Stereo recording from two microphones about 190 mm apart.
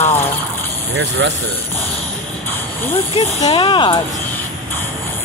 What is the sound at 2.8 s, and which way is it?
Speech, 10° left (ahead or behind).